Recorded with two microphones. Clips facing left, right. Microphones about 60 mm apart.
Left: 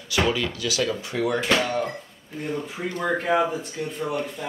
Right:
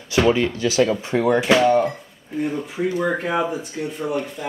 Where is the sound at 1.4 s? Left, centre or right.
Centre.